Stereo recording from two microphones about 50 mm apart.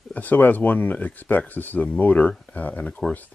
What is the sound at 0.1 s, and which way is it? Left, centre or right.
Speech, left.